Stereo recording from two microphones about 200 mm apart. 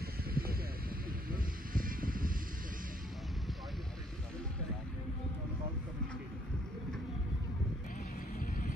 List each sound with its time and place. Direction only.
0.0 s vehicle: 45° right (ahead or behind)
8.4 s vehicle: 40° left (ahead or behind)